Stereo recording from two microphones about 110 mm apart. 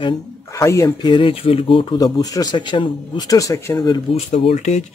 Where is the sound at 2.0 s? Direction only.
35° left (ahead or behind).